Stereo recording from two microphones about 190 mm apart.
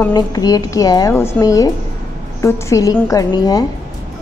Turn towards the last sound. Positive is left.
turn(degrees=20)  # may be behind; listen again after turning